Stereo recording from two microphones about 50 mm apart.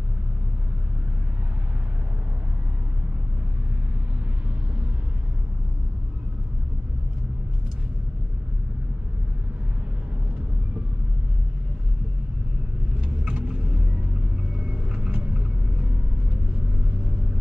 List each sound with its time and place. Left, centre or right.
13.0 s vehicle: centre